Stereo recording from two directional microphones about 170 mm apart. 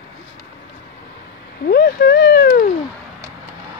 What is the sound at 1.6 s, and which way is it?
Speech, 65° left (ahead or behind).